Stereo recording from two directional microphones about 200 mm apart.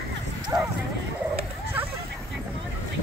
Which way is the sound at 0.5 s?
15° right (ahead or behind).